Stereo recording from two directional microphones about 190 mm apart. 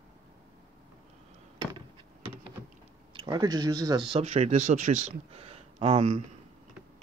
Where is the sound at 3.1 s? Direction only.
20° right (ahead or behind).